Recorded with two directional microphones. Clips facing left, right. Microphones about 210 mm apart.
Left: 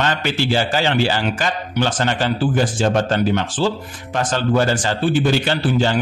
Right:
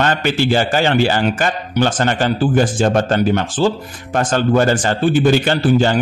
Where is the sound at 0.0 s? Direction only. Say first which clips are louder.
Right 4 dB; 50° right (ahead or behind).